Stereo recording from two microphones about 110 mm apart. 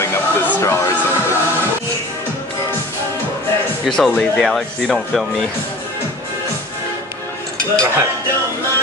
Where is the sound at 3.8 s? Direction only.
Centre (ahead or behind).